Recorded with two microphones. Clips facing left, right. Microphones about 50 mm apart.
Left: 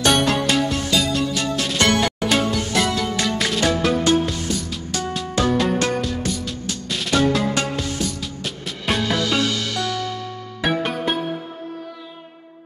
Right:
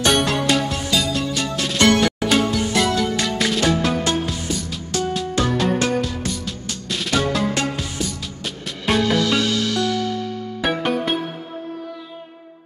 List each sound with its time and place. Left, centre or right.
0.0 s music: centre
10.6 s music: centre